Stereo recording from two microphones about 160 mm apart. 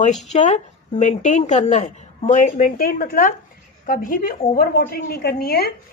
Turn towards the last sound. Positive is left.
turn(degrees=75)  # may be behind; listen again after turning